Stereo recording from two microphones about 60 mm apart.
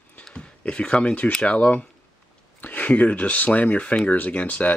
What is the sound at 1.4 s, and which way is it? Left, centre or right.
Speech, left.